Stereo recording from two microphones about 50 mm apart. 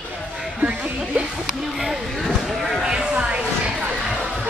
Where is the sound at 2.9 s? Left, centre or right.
Right.